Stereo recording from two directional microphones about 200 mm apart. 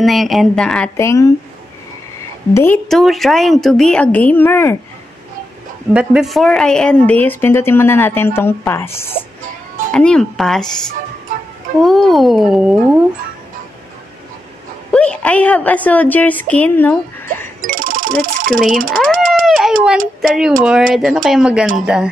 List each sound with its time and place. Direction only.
0.0 s speech: centre (ahead or behind)
2.5 s speech: 10° left (ahead or behind)
5.9 s a woman's voice: centre (ahead or behind)
11.8 s speech: centre (ahead or behind)
14.9 s a woman's voice: 5° left (ahead or behind)
17.6 s music: 45° right (ahead or behind)
18.2 s speech: 45° right (ahead or behind)
18.6 s speech: centre (ahead or behind)